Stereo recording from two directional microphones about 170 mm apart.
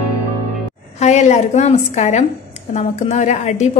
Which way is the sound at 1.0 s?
45° left (ahead or behind).